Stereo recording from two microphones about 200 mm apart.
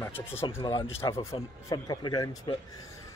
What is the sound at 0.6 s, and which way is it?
Speech, 25° left (ahead or behind).